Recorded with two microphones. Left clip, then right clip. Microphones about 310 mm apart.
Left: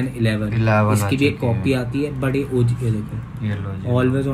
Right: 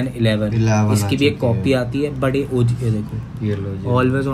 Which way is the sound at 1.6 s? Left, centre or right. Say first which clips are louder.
Right 2 dB; centre.